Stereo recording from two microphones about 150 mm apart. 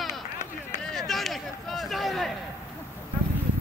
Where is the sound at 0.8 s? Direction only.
Centre (ahead or behind).